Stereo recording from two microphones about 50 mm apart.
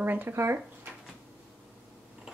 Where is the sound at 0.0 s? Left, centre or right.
Right.